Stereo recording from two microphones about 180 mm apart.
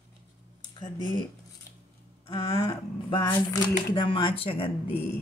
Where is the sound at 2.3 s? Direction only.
30° left (ahead or behind).